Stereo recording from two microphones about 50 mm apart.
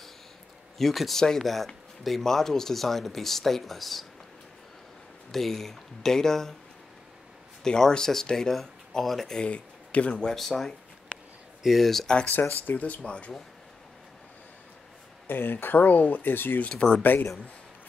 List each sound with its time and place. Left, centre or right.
0.7 s speech: centre
5.3 s speech: centre
7.6 s speech: centre
9.4 s speech: left
10.1 s speech: centre
12.6 s speech: left
15.2 s speech: left
16.6 s speech: centre
17.0 s speech: left